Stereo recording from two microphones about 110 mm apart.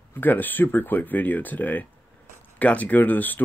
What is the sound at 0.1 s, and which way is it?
Speech, 15° left (ahead or behind).